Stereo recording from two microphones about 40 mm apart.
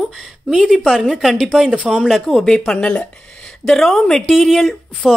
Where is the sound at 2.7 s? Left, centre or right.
Left.